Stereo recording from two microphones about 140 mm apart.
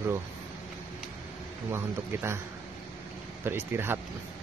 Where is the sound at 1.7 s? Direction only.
15° right (ahead or behind).